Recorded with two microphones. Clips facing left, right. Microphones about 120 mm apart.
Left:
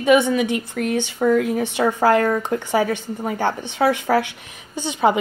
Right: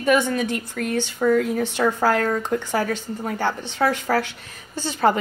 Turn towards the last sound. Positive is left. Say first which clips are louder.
# left 2 dB
turn(degrees=15)  # may be behind; listen again after turning